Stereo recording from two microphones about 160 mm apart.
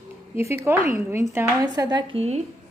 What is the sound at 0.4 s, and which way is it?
Speech, 15° right (ahead or behind).